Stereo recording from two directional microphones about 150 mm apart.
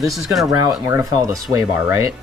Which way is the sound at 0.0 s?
Centre (ahead or behind).